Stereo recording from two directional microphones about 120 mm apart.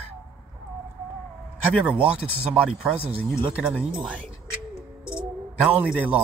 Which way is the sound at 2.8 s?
10° right (ahead or behind).